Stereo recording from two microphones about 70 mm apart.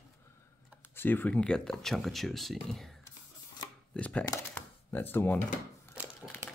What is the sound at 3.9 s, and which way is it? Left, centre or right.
Speech, centre.